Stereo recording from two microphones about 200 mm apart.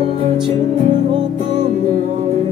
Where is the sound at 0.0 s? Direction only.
30° right (ahead or behind).